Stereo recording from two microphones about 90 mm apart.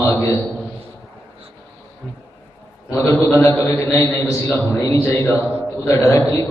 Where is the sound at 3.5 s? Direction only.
25° left (ahead or behind).